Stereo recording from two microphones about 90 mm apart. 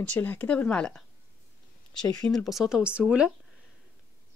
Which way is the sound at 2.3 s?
Centre (ahead or behind).